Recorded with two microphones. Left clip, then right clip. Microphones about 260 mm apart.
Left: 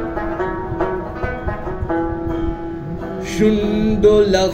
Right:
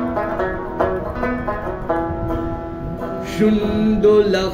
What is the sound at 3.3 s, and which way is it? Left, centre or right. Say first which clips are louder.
Music: left 2 dB; left.